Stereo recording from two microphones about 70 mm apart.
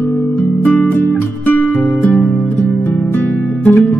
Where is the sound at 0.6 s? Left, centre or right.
Left.